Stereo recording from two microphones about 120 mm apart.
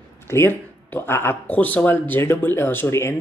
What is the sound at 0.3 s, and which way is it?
A man's voice, 20° left (ahead or behind).